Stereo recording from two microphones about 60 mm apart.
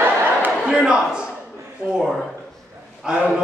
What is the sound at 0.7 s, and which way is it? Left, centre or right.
Speech, centre.